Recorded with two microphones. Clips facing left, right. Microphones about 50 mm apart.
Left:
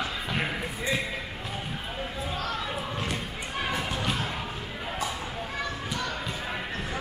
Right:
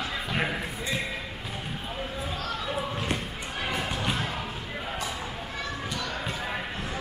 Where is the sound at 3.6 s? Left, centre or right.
Centre.